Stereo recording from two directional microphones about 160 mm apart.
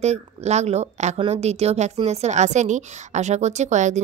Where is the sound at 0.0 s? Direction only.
45° right (ahead or behind).